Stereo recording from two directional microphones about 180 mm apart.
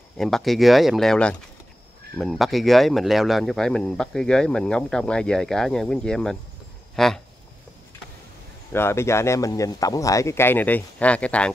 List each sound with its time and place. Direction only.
0.2 s speech: centre (ahead or behind)
8.7 s speech: 15° left (ahead or behind)